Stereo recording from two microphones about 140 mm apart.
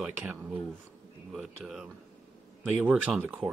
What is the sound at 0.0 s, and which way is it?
Speech, 15° right (ahead or behind).